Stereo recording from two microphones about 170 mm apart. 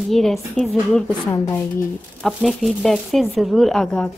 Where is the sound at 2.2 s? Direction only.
Centre (ahead or behind).